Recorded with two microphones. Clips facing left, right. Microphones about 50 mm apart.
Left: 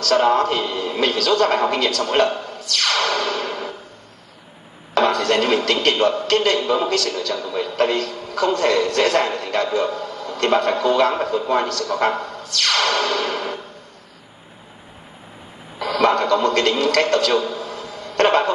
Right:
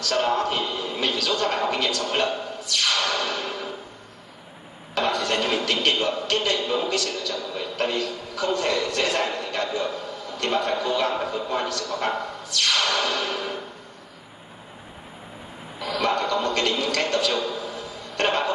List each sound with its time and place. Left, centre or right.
0.0 s a man's voice: left
4.9 s a man's voice: left
7.1 s a man's voice: left
15.8 s a sound: left